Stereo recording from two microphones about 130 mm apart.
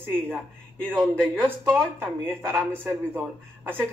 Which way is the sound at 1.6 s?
15° right (ahead or behind).